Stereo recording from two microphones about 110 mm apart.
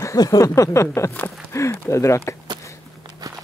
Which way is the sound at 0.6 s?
25° left (ahead or behind).